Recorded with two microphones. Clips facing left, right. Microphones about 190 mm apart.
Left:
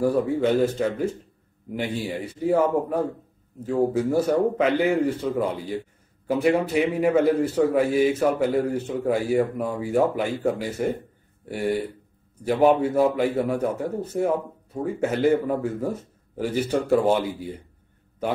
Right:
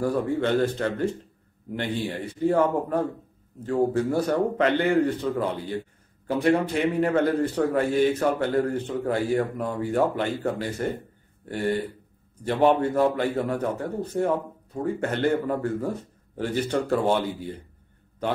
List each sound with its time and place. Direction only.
0.0 s a man's voice: 5° left (ahead or behind)